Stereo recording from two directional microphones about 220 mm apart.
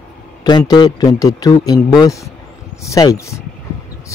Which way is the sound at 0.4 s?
20° left (ahead or behind).